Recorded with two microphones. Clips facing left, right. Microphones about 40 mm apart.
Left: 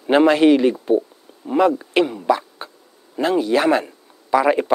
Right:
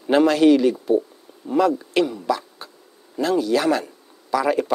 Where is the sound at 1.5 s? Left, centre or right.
Left.